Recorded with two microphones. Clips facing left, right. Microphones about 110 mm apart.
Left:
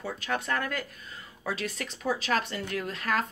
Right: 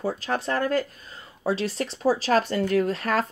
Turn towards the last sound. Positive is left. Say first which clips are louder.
# right 6 dB
turn(degrees=-35)  # may be behind; listen again after turning